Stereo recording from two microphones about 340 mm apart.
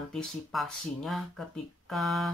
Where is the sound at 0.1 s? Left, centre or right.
Centre.